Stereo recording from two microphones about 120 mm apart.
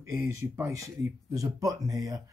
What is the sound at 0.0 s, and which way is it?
Speech, 25° right (ahead or behind).